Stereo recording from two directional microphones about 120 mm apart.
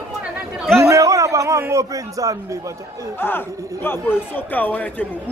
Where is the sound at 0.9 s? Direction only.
25° right (ahead or behind).